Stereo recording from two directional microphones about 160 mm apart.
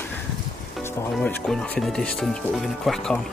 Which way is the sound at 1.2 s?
5° left (ahead or behind).